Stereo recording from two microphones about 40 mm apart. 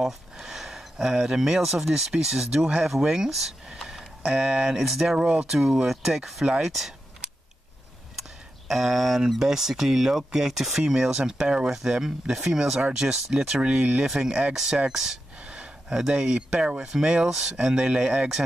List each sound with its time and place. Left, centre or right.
0.0 s speech: centre
2.5 s speech: right
2.8 s speech: centre
4.4 s speech: right
4.8 s speech: centre
5.1 s speech: right
5.6 s speech: centre
8.6 s speech: centre; by 11.7 s right
11.7 s speech: centre
13.7 s speech: right
14.0 s speech: centre
15.3 s gasp: right
15.9 s speech: centre
16.8 s speech: centre